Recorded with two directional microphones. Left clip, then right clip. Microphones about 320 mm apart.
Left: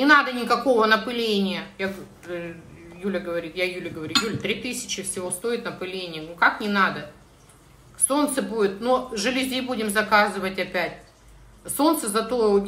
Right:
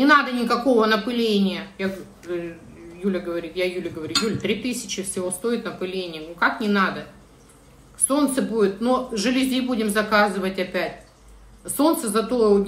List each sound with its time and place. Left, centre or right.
0.0 s a man's voice: centre
8.1 s a man's voice: centre